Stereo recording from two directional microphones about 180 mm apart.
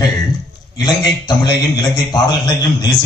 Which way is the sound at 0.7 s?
20° left (ahead or behind).